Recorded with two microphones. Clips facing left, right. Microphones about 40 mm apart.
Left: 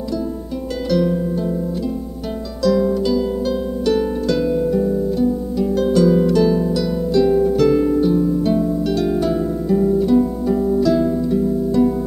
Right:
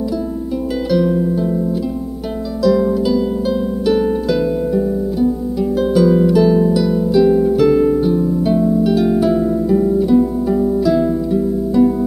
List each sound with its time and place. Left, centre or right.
0.8 s harp: centre
2.6 s harp: centre